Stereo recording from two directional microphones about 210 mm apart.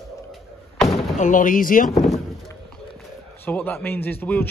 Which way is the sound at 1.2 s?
40° left (ahead or behind).